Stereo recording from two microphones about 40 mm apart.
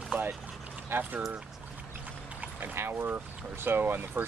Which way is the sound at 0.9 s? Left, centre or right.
Right.